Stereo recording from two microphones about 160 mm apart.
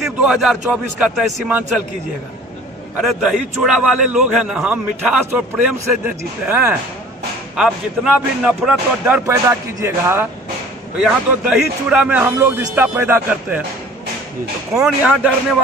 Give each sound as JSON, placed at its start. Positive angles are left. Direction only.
{"t": 0.0, "sound": "speech", "side_deg": -5}
{"t": 3.0, "sound": "a man's voice", "side_deg": -5}
{"t": 9.2, "sound": "a man's voice", "side_deg": -20}
{"t": 14.7, "sound": "speech", "side_deg": -5}